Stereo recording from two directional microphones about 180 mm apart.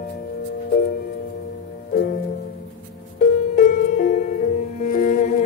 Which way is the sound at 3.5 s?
45° left (ahead or behind).